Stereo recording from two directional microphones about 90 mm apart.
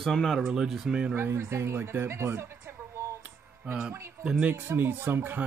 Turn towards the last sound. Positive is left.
turn(degrees=-25)  # may be behind; listen again after turning